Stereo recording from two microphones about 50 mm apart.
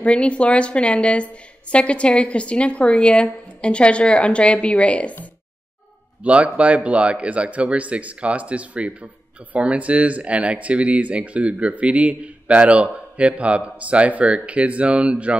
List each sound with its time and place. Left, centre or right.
0.0 s a woman's voice: left
6.2 s speech: right